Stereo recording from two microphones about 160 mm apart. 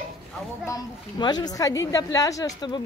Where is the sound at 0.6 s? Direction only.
25° left (ahead or behind).